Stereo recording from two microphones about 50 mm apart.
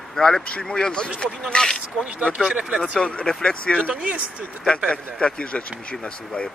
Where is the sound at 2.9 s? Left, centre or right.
Centre.